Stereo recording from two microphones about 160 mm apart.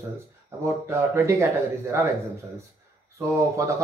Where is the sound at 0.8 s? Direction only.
15° right (ahead or behind).